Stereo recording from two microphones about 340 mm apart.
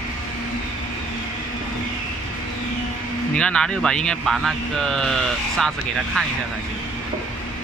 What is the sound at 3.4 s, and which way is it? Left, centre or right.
Speech, centre.